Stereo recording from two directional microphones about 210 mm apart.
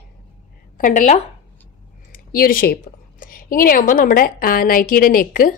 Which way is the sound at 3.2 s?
40° left (ahead or behind).